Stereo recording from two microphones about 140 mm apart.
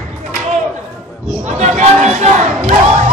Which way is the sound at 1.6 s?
55° right (ahead or behind).